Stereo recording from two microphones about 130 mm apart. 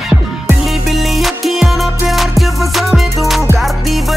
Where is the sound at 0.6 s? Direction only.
Centre (ahead or behind).